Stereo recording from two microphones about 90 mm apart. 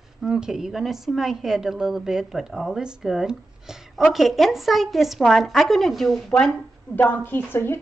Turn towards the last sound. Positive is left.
turn(degrees=25)  # may be behind; listen again after turning